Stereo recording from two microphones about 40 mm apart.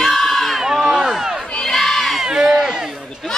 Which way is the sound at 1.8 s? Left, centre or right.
Centre.